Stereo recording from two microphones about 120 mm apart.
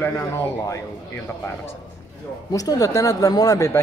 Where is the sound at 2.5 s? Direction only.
30° left (ahead or behind).